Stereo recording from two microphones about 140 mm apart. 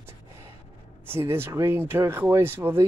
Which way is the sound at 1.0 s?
15° right (ahead or behind).